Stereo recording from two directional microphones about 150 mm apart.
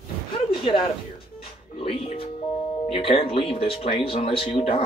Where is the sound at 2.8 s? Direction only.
40° left (ahead or behind).